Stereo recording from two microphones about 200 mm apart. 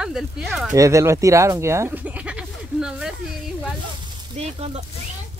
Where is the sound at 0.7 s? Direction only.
15° right (ahead or behind).